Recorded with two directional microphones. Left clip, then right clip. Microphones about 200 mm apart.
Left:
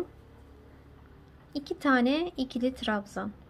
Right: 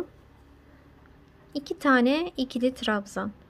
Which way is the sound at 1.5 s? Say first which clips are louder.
Right 4 dB; 20° right (ahead or behind).